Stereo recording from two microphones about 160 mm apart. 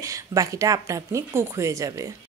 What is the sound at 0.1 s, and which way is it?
Speech, 20° right (ahead or behind).